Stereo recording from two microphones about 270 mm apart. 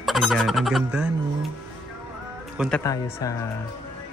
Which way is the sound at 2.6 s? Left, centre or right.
Centre.